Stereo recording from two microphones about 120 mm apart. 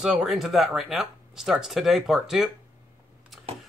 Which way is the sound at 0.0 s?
5° right (ahead or behind).